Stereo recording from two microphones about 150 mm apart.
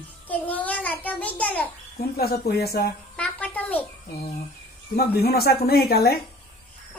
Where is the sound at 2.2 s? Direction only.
90° left.